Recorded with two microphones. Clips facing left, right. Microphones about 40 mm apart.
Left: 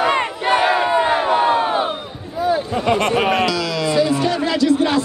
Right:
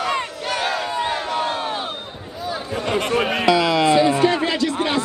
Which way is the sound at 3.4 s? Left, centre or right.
Right.